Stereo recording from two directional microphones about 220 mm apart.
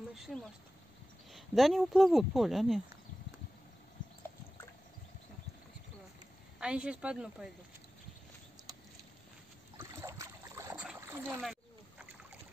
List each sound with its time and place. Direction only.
0.1 s speech: centre (ahead or behind)
6.6 s speech: 5° right (ahead or behind)
8.7 s a sound: 15° right (ahead or behind)
9.8 s boat: 15° right (ahead or behind)
10.9 s splash: 10° right (ahead or behind)